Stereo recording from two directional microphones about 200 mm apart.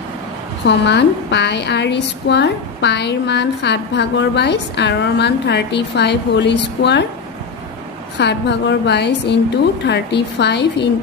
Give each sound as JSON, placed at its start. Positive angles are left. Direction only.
{"t": 0.7, "sound": "a woman's voice", "side_deg": 60}
{"t": 8.2, "sound": "a woman's voice", "side_deg": 60}